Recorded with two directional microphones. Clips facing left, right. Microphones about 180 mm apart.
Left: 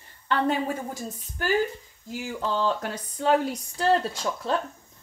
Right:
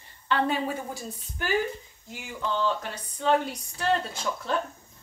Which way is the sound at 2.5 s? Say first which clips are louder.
Left 1 dB; 40° left (ahead or behind).